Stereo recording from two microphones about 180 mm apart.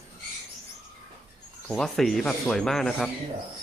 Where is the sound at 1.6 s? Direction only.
Centre (ahead or behind).